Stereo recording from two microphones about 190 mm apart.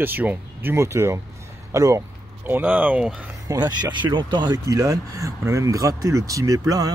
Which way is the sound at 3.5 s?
20° right (ahead or behind).